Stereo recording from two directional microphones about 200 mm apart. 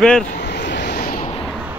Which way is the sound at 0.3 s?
55° left (ahead or behind).